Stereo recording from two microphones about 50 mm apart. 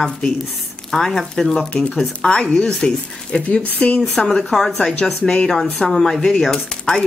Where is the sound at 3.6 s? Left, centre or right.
Left.